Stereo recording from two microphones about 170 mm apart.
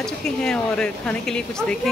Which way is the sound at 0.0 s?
5° left (ahead or behind).